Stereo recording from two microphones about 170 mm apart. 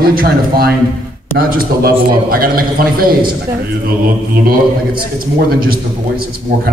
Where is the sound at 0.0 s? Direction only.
60° right (ahead or behind).